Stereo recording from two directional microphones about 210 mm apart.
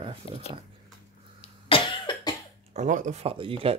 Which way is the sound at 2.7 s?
35° right (ahead or behind).